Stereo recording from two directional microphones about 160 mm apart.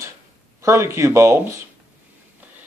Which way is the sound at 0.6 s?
20° right (ahead or behind).